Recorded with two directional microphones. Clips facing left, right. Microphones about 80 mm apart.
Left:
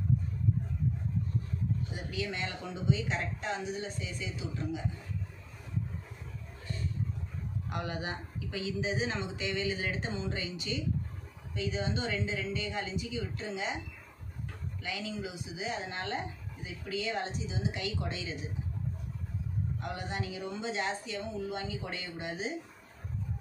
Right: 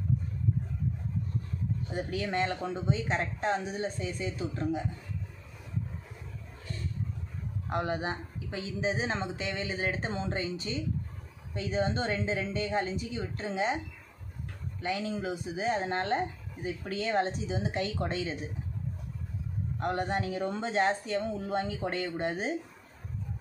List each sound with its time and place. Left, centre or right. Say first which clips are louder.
2.0 s speech: right 6 dB; right
7.7 s speech: right 6 dB; right
14.8 s speech: right 6 dB; right
19.8 s speech: right 10 dB; right